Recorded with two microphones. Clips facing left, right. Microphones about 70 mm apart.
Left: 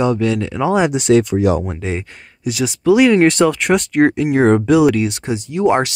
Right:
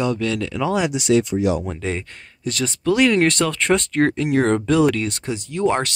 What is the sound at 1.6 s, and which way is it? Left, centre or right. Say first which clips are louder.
Speech: left 3 dB; centre.